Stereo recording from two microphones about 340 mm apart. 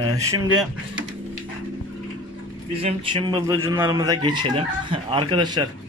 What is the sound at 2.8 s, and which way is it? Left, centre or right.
A man's voice, centre.